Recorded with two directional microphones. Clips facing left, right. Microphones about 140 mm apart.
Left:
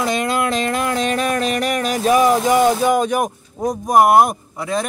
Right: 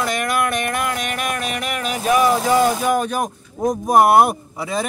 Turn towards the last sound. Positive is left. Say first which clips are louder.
# left 1 dB
turn(degrees=0)  # may be behind; listen again after turning